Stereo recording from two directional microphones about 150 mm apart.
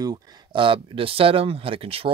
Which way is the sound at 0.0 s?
30° right (ahead or behind).